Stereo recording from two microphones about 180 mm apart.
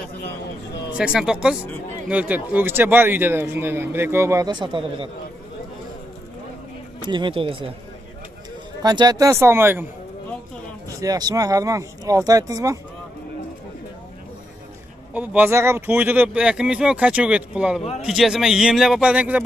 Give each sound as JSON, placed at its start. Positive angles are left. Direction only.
{"t": 0.9, "sound": "a man's voice", "side_deg": -5}
{"t": 7.0, "sound": "speech", "side_deg": -25}
{"t": 8.8, "sound": "a man's voice", "side_deg": -20}
{"t": 11.0, "sound": "speech", "side_deg": -20}
{"t": 15.1, "sound": "a man's voice", "side_deg": -10}